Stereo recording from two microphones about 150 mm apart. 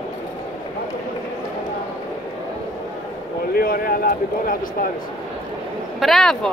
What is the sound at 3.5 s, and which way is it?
Speech, 75° left (ahead or behind).